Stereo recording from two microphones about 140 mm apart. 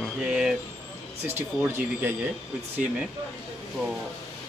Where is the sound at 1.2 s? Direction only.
15° right (ahead or behind).